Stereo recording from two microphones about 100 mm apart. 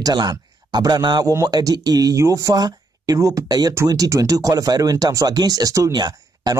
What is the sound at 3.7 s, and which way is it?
Speech, 30° right (ahead or behind).